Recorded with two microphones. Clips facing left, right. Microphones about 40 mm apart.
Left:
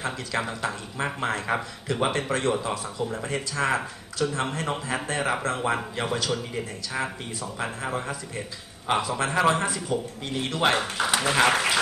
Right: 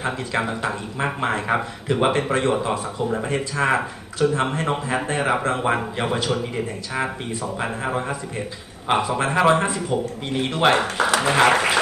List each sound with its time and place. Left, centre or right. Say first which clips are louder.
0.0 s speech: right 5 dB; right
7.5 s speech: right 4 dB; right
11.1 s speech: right 4 dB; right